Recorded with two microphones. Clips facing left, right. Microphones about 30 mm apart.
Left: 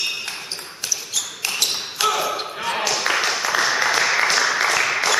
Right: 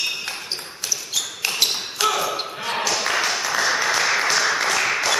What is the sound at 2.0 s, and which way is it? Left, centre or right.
Basketball bounce, centre.